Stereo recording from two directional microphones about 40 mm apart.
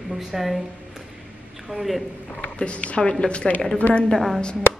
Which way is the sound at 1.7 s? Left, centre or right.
Right.